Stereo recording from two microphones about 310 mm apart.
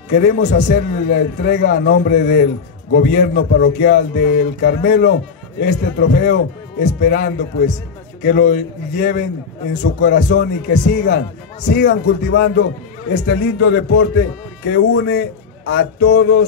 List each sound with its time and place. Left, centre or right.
0.1 s a man's voice: left